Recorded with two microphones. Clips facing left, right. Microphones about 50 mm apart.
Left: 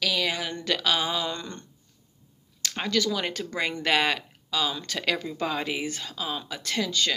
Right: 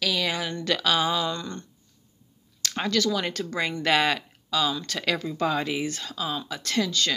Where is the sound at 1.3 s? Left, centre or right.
Left.